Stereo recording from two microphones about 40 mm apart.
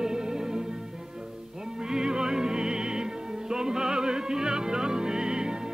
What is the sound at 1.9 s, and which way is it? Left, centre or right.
Music, centre.